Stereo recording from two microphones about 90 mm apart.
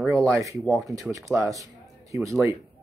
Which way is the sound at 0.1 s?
35° right (ahead or behind).